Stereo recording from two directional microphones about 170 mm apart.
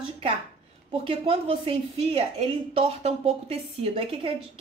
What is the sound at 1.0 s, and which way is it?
A woman's voice, 30° right (ahead or behind).